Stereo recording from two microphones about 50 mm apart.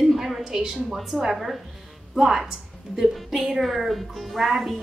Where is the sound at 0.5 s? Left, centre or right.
Centre.